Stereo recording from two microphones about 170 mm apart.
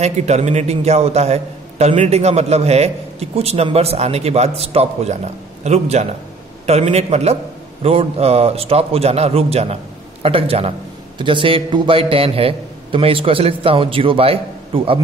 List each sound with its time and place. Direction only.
0.0 s a man's voice: 40° right (ahead or behind)